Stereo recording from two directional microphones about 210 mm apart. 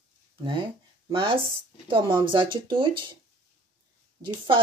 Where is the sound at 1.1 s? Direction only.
25° right (ahead or behind).